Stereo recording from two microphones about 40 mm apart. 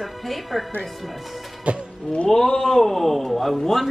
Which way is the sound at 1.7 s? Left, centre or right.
Right.